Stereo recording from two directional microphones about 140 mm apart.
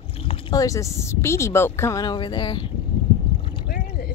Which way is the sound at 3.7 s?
90° left.